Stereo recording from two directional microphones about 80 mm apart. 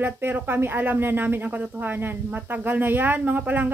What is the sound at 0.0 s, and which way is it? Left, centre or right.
Speech, right.